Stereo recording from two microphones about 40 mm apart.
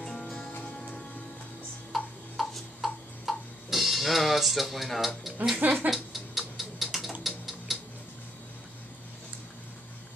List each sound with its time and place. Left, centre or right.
0.0 s music: centre
2.3 s music: centre
4.8 s speech: centre
5.6 s speech: right
6.1 s tick-tock: centre